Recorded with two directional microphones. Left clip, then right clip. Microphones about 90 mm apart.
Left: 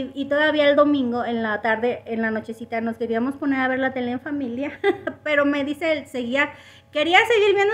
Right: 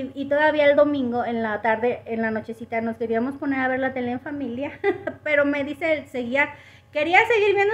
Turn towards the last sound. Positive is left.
turn(degrees=30)  # may be behind; listen again after turning